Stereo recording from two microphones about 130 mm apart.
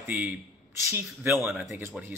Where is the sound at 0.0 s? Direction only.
15° right (ahead or behind).